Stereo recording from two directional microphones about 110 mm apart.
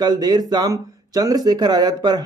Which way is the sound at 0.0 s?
40° right (ahead or behind).